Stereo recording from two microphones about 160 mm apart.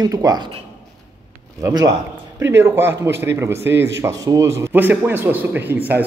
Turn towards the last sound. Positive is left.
turn(degrees=-10)  # may be behind; listen again after turning